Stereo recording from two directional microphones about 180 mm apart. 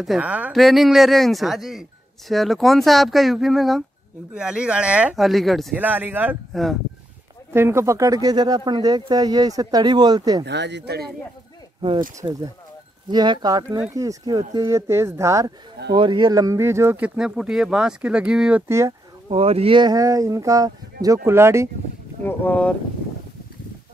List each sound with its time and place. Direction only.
0.0 s speech: 5° right (ahead or behind)
6.5 s speech: centre (ahead or behind)
7.5 s speech: 15° right (ahead or behind)
10.4 s speech: 70° right (ahead or behind)
12.2 s speech: 20° right (ahead or behind)
18.7 s speech: 15° right (ahead or behind)
19.2 s speech: 35° right (ahead or behind); by 21.6 s 15° right (ahead or behind)
22.2 s speech: 10° left (ahead or behind)